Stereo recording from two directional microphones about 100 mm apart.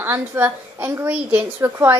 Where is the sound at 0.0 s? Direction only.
25° right (ahead or behind).